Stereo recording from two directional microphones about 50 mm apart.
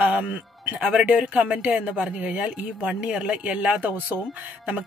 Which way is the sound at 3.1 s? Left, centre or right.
Centre.